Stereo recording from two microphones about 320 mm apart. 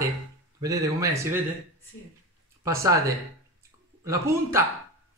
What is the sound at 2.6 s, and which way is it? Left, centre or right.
Speech, centre.